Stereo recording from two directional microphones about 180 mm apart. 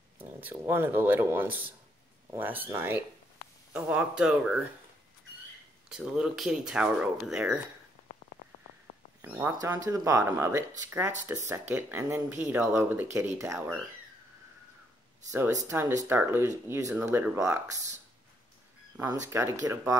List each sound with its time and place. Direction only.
0.2 s speech: 10° right (ahead or behind)
5.9 s speech: 5° right (ahead or behind)
9.2 s speech: 10° right (ahead or behind)
15.6 s speech: 15° right (ahead or behind)
19.2 s speech: 15° right (ahead or behind)